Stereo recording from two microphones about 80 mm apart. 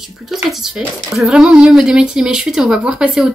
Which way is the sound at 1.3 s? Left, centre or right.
Centre.